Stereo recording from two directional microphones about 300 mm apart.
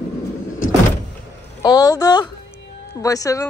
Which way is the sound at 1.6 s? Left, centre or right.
Centre.